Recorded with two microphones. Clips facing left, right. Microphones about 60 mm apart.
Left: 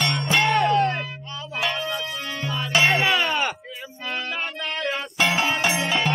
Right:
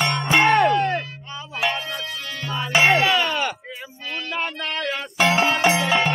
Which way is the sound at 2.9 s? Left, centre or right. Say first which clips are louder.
Right 2 dB; centre.